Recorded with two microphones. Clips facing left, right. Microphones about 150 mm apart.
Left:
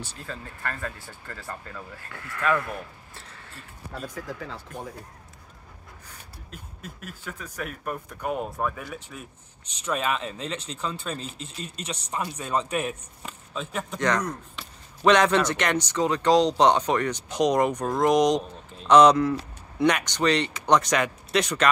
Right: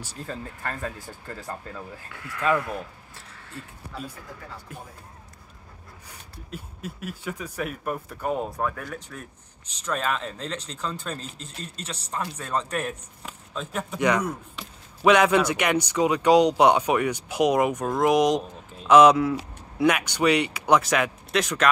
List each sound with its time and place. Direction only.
0.6 s speech: 20° right (ahead or behind)
4.7 s speech: 10° right (ahead or behind)
6.0 s speech: 5° right (ahead or behind)